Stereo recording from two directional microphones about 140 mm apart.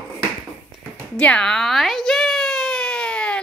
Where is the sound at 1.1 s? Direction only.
10° left (ahead or behind).